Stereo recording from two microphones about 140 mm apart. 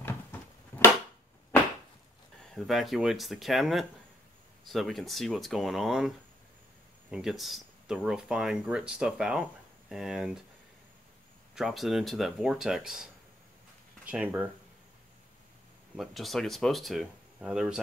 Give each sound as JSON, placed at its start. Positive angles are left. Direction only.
{"t": 0.0, "sound": "a sound", "side_deg": 15}
{"t": 2.5, "sound": "speech", "side_deg": 0}
{"t": 11.5, "sound": "speech", "side_deg": 0}
{"t": 16.0, "sound": "speech", "side_deg": 0}